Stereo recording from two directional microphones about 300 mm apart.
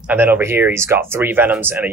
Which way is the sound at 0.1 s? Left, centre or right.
Centre.